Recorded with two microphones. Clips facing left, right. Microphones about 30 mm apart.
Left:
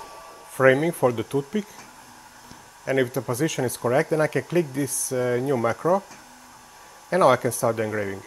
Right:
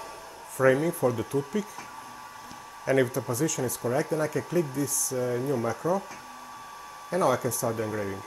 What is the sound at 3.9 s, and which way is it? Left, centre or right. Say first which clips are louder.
Speech: left 6 dB; left.